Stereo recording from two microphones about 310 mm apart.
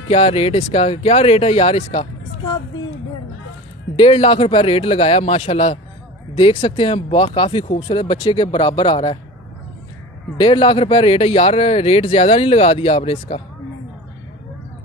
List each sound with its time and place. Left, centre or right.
0.1 s speech: centre
3.9 s speech: centre
10.3 s speech: centre